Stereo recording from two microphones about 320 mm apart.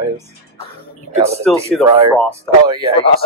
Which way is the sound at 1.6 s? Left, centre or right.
Centre.